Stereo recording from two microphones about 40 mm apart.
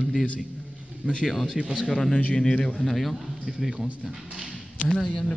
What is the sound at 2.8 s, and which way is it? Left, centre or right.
Speech, centre.